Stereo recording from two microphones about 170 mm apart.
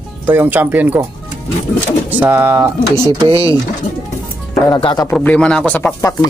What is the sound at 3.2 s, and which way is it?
Speech, 30° right (ahead or behind).